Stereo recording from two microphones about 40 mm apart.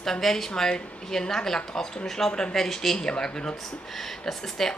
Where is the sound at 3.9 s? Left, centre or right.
Centre.